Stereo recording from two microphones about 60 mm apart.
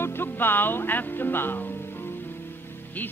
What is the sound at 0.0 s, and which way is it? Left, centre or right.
Music, left.